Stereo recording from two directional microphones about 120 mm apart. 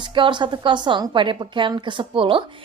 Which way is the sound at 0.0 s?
40° right (ahead or behind).